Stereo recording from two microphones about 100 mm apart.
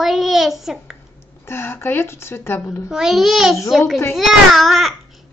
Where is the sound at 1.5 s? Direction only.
25° left (ahead or behind).